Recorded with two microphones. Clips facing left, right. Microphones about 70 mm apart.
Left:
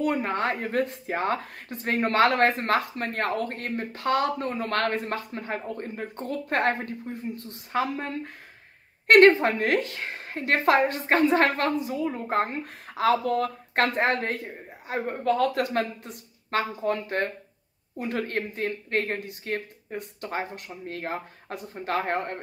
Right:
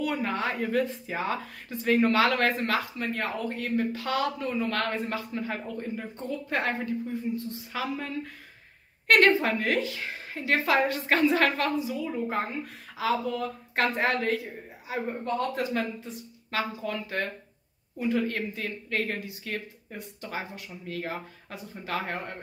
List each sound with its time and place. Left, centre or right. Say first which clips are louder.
0.0 s speech: left 3 dB; left
10.8 s speech: left 2 dB; left
15.2 s speech: left 7 dB; left